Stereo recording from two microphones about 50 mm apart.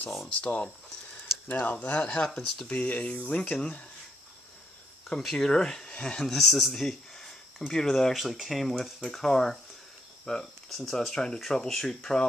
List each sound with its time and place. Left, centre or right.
0.4 s speech: left
5.2 s speech: centre
6.2 s speech: centre